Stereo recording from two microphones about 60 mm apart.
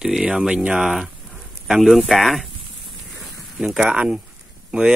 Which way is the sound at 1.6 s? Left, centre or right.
Centre.